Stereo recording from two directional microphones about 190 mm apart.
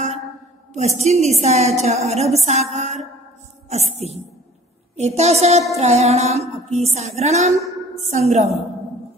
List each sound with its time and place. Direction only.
0.7 s a woman's voice: 35° right (ahead or behind)